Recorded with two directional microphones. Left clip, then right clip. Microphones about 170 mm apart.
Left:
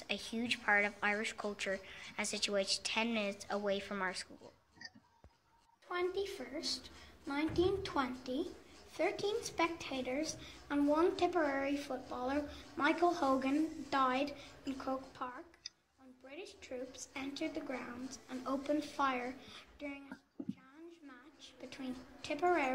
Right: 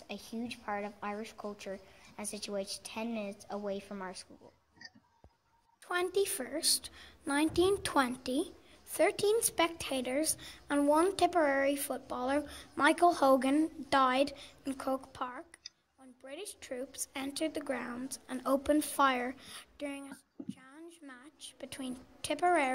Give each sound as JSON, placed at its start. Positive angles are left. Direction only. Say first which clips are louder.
{"t": 0.0, "sound": "a woman's voice", "louder": "left 3 dB", "side_deg": -30}
{"t": 5.9, "sound": "a woman's voice", "louder": "right 6 dB", "side_deg": -60}
{"t": 21.1, "sound": "a sound", "louder": "right 5 dB", "side_deg": -60}